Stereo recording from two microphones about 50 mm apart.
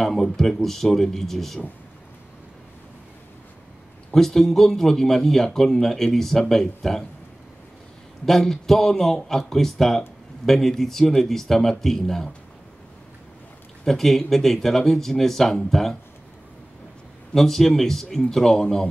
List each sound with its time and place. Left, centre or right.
0.0 s speech: centre
4.1 s speech: centre
8.3 s speech: centre
13.8 s speech: centre
17.3 s speech: centre